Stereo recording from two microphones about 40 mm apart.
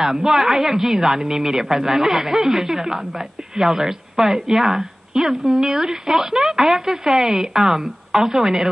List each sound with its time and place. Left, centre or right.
0.0 s a woman's voice: centre